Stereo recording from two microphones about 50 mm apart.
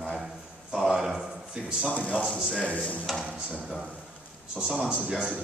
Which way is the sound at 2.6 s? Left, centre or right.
Left.